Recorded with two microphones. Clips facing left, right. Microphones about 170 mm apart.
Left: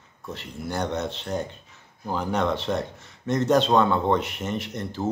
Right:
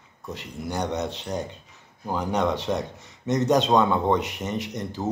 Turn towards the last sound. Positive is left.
turn(degrees=-15)  # may be behind; listen again after turning